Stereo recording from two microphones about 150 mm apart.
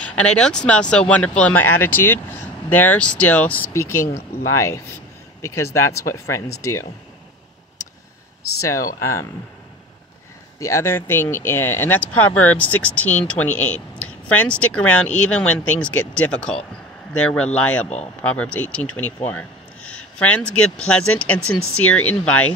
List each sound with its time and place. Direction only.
0.0 s speech: 5° left (ahead or behind)
8.6 s speech: 20° left (ahead or behind)
10.6 s speech: 20° left (ahead or behind)